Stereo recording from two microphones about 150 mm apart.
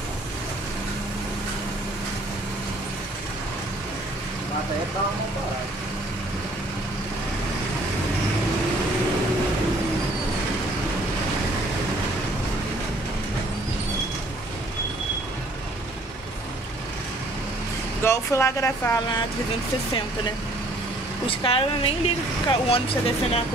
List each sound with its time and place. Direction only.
18.0 s speech: 15° left (ahead or behind)
21.3 s speech: 35° left (ahead or behind)